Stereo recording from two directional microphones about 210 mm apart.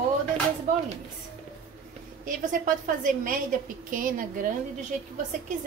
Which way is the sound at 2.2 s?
40° right (ahead or behind).